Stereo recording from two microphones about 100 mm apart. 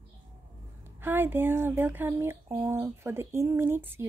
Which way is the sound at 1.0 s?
20° right (ahead or behind).